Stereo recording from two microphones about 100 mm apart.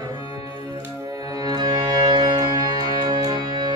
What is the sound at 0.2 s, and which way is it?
Music, 70° left (ahead or behind).